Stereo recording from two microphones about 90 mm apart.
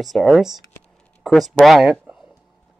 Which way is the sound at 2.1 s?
20° right (ahead or behind).